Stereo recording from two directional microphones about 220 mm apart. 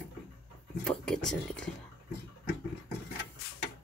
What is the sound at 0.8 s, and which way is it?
Speech, 5° left (ahead or behind).